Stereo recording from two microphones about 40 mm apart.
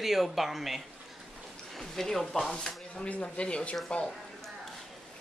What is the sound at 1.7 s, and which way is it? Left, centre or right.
Speech, centre.